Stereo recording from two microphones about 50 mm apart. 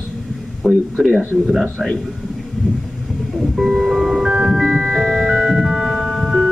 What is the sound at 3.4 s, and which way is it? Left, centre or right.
Music, centre.